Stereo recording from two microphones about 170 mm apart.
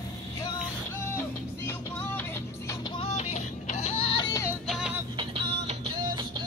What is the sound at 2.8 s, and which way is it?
Music, 30° left (ahead or behind).